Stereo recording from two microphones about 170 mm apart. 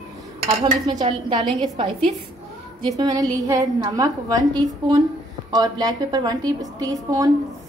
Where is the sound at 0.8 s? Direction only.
25° right (ahead or behind).